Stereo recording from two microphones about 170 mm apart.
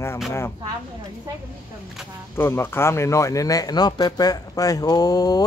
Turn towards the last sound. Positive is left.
turn(degrees=20)  # may be behind; listen again after turning